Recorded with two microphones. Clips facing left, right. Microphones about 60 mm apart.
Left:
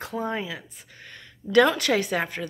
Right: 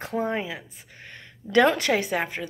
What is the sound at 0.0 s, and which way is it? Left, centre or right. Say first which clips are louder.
A woman's voice: right 2 dB; right.